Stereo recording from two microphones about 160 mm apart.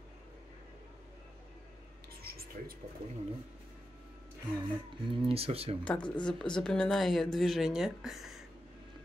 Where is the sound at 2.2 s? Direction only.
70° right (ahead or behind).